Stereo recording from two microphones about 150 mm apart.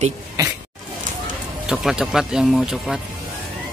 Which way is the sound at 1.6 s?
5° right (ahead or behind).